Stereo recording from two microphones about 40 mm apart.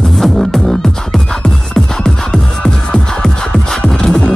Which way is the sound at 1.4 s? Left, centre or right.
Centre.